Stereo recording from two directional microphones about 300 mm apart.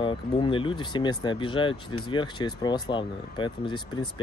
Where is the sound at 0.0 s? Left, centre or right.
Centre.